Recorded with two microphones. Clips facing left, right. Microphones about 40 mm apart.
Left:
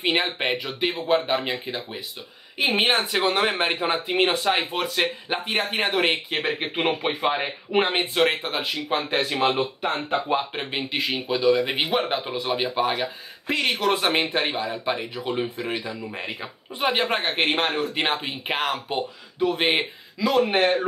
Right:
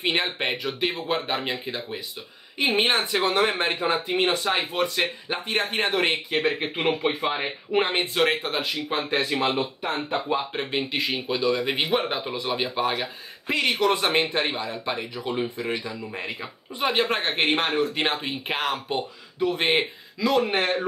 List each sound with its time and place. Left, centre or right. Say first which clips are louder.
0.0 s speech: left 2 dB; centre
5.0 s speech: left 2 dB; centre
10.1 s speech: left 2 dB; left
10.5 s speech: right 1 dB; centre